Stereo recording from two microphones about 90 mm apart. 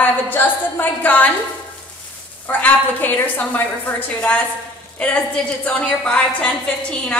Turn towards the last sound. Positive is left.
turn(degrees=10)  # may be behind; listen again after turning